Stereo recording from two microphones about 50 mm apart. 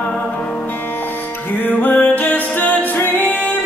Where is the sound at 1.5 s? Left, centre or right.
Left.